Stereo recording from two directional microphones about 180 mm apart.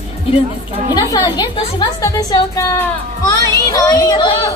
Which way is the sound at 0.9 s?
25° left (ahead or behind).